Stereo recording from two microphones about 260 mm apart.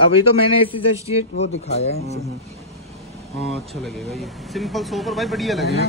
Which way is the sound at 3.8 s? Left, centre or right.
Centre.